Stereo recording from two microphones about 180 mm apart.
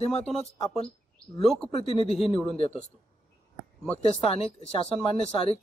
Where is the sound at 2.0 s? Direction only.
35° left (ahead or behind).